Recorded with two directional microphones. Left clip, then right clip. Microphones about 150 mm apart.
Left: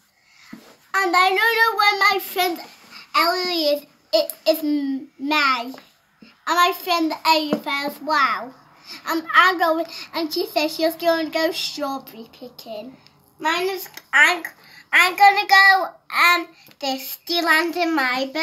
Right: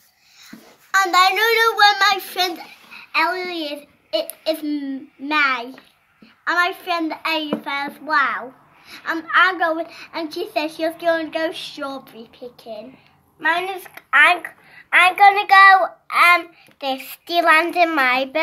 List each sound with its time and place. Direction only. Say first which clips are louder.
0.5 s child singing: right 5 dB; centre (ahead or behind)
3.3 s a child's voice: left 4 dB; 10° left (ahead or behind)
13.4 s a child's voice: right 2 dB; 30° right (ahead or behind)